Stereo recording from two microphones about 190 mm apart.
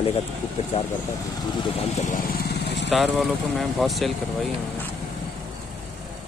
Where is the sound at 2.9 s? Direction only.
Centre (ahead or behind).